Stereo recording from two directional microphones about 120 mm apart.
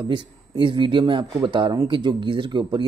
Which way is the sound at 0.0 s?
45° right (ahead or behind).